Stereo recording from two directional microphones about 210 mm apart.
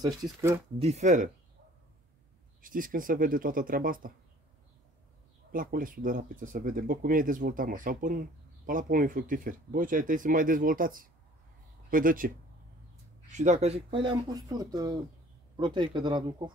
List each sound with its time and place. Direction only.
0.0 s speech: 15° right (ahead or behind)
0.7 s speech: 30° right (ahead or behind)
2.6 s speech: 40° right (ahead or behind)
5.5 s speech: 40° right (ahead or behind)
13.4 s speech: 30° right (ahead or behind)